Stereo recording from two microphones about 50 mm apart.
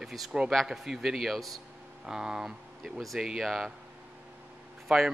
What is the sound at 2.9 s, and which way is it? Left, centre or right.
Speech, centre.